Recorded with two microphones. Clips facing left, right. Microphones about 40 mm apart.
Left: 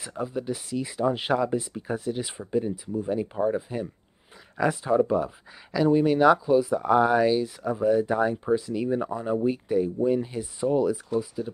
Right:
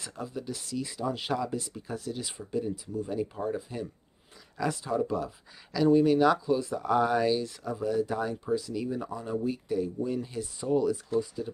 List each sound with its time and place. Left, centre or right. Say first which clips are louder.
0.1 s speech: left 8 dB; left
7.7 s speech: left 6 dB; left; by 11.5 s centre